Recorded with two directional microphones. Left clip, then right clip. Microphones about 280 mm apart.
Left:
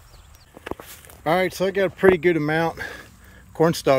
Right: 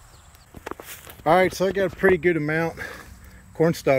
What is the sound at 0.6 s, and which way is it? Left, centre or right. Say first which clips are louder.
Speech: left 1 dB; centre.